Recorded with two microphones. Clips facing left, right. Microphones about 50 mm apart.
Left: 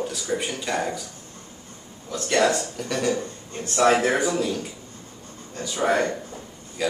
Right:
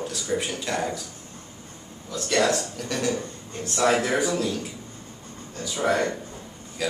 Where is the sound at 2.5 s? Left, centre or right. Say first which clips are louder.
Left 1 dB; centre.